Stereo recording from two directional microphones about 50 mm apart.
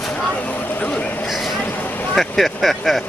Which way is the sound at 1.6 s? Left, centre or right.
Left.